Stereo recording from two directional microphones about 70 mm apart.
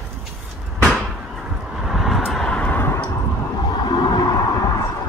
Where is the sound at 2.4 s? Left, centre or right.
Centre.